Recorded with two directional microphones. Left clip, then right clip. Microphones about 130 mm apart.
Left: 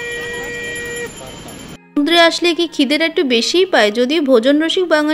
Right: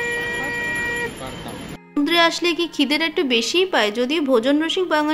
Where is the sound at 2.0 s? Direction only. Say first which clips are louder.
Left 6 dB; 25° left (ahead or behind).